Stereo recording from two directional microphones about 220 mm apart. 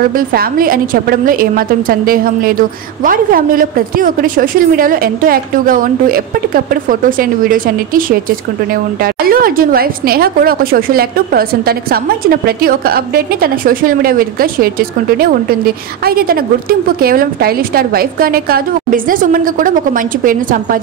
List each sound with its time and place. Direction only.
0.1 s a woman's voice: 40° right (ahead or behind)